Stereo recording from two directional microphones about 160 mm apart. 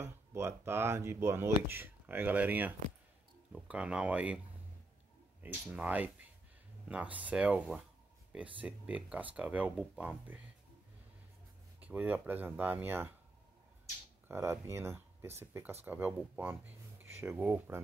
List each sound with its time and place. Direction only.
0.0 s speech: 15° right (ahead or behind)
5.4 s speech: 10° right (ahead or behind)
11.8 s speech: 10° right (ahead or behind)
14.2 s speech: 15° right (ahead or behind)